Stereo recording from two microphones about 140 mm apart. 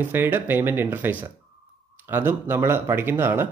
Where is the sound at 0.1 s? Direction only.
15° right (ahead or behind).